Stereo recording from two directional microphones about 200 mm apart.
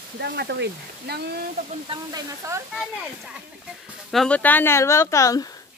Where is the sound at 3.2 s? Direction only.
5° right (ahead or behind); by 5.6 s 15° left (ahead or behind).